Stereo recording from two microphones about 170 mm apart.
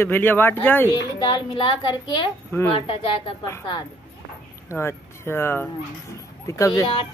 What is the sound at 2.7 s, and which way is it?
Child singing, 35° left (ahead or behind).